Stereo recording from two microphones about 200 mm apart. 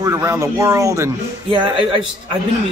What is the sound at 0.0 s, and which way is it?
A man's voice, 15° right (ahead or behind).